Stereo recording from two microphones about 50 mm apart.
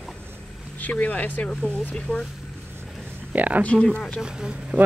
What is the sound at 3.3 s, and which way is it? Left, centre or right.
Speech, right.